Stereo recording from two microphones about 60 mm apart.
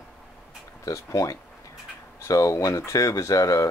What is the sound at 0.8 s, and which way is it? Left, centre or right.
Speech, left.